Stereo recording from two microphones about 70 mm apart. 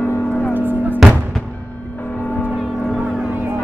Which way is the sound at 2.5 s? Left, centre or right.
Centre.